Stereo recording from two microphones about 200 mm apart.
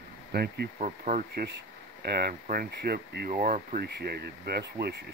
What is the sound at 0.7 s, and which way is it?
Speech, 35° right (ahead or behind).